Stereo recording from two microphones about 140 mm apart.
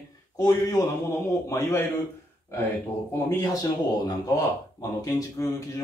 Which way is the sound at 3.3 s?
25° left (ahead or behind).